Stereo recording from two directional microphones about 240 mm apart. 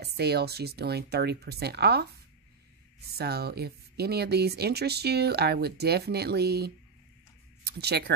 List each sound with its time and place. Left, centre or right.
0.0 s speech: right